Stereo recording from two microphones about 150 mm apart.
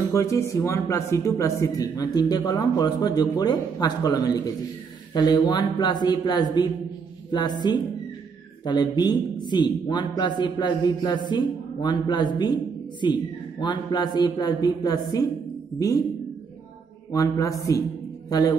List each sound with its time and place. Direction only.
0.1 s a man's voice: 20° left (ahead or behind)
17.1 s a man's voice: 20° left (ahead or behind)